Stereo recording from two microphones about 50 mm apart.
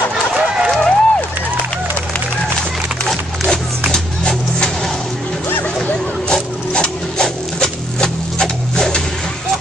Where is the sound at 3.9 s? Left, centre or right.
Centre.